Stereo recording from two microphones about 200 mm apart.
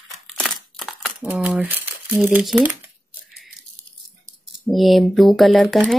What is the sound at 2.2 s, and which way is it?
Speech, centre (ahead or behind).